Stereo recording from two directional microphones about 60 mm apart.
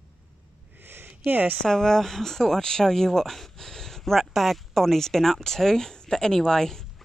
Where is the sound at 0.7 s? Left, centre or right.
Right.